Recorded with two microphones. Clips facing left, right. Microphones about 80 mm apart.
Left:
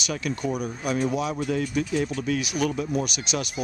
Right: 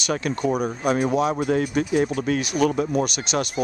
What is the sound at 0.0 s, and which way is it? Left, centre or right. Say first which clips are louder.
Speech: right 5 dB; right.